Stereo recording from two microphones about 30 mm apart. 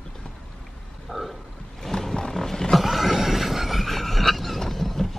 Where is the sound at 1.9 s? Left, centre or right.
Left.